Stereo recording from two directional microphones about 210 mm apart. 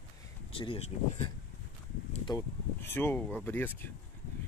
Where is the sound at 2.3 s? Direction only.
15° left (ahead or behind).